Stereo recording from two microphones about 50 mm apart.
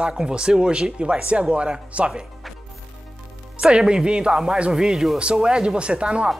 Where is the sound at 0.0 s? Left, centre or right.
Centre.